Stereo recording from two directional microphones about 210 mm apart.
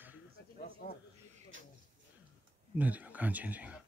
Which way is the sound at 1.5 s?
65° right (ahead or behind).